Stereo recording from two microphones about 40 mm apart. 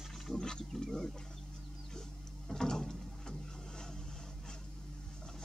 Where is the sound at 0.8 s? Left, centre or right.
Centre.